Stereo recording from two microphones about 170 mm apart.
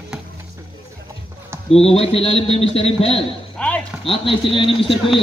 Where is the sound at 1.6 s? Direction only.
35° left (ahead or behind).